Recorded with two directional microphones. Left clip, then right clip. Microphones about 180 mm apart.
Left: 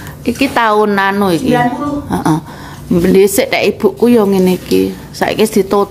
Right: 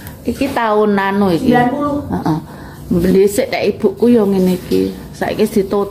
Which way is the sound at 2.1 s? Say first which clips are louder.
Left 4 dB; 20° left (ahead or behind).